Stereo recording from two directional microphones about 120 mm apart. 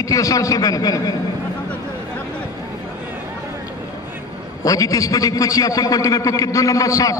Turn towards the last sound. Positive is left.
turn(degrees=30)  # may be behind; listen again after turning